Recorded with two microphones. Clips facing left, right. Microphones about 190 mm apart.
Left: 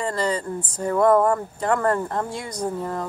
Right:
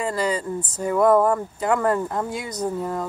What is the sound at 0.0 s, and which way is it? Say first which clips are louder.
Speech: right 1 dB; 5° right (ahead or behind).